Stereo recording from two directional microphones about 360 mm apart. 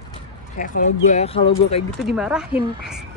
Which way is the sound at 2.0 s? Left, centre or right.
Centre.